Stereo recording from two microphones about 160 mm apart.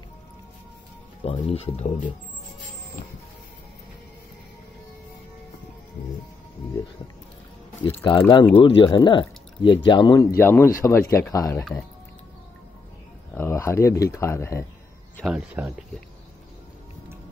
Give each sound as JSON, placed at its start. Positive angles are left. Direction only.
{"t": 1.2, "sound": "speech", "side_deg": 35}
{"t": 8.2, "sound": "speech", "side_deg": 25}
{"t": 13.3, "sound": "speech", "side_deg": 15}
{"t": 15.2, "sound": "speech", "side_deg": -5}